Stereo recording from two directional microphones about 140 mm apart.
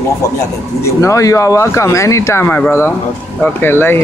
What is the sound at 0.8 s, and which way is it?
Speech, 20° left (ahead or behind).